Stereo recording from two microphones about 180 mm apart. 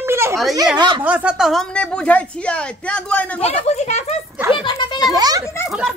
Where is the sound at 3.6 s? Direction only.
40° left (ahead or behind).